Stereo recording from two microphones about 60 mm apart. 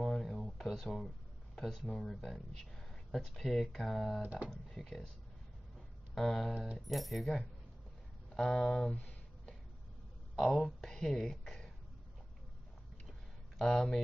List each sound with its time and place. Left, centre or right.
0.0 s speech: centre
4.2 s speech: right
4.5 s speech: centre
6.1 s speech: centre
10.3 s speech: centre
13.6 s speech: centre